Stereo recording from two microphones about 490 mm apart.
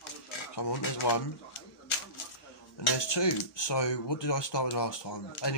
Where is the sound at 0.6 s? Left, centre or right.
Left.